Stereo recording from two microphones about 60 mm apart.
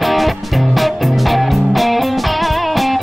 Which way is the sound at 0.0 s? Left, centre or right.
Centre.